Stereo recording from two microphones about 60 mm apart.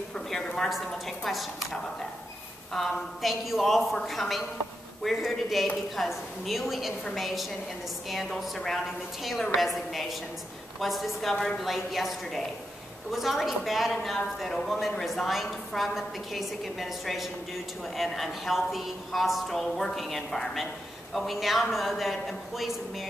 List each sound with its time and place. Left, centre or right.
0.7 s a woman's voice: centre